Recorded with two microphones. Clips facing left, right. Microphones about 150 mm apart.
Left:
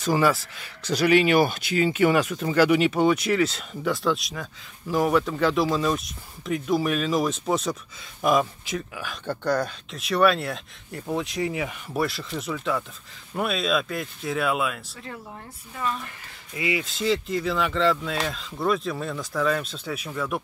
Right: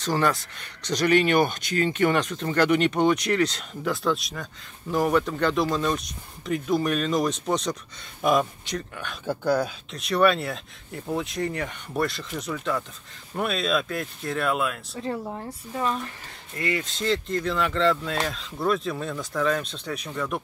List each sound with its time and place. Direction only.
0.0 s speech: 10° left (ahead or behind)
15.0 s speech: 30° right (ahead or behind)
16.5 s speech: 5° left (ahead or behind)